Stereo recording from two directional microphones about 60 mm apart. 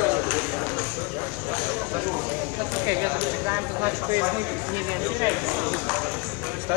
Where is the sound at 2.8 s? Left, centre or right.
Right.